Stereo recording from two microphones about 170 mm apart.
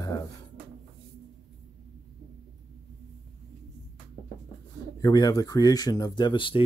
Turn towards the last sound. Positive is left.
turn(degrees=30)  # may be behind; listen again after turning